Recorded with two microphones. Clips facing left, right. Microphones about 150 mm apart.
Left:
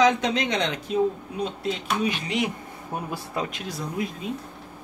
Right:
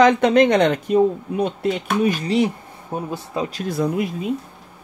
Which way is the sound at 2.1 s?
35° right (ahead or behind).